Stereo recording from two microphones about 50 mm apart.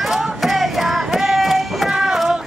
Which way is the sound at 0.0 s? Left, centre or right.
Centre.